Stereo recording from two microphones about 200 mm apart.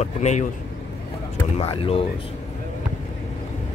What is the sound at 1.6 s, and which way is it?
Speech, 30° left (ahead or behind).